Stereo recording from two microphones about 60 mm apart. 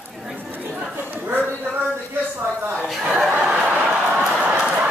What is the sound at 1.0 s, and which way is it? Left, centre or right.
Speech, right.